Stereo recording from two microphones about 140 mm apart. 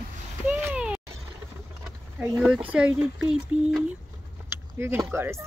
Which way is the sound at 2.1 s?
10° right (ahead or behind).